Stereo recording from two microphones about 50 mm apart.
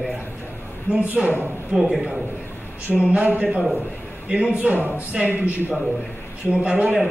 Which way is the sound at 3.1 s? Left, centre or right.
Right.